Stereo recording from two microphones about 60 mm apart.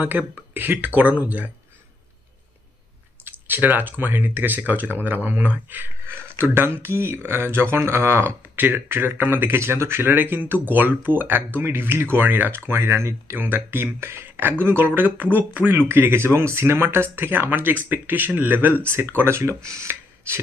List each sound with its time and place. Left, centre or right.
0.1 s speech: right
3.3 s speech: right